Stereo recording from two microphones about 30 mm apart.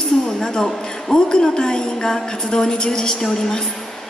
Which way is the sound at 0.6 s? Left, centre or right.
Centre.